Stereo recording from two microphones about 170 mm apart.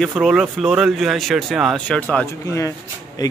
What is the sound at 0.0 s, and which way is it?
Speech, centre (ahead or behind).